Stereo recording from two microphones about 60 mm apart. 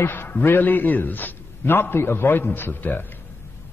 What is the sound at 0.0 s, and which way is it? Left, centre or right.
A man's voice, left.